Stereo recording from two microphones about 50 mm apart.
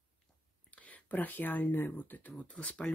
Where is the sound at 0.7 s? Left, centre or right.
Left.